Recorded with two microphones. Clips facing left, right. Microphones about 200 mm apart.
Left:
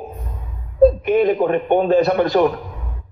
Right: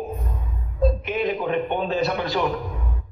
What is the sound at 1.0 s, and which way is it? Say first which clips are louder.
Speech: left 9 dB; 50° left (ahead or behind).